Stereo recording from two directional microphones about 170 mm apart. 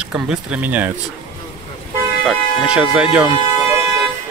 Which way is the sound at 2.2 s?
5° right (ahead or behind).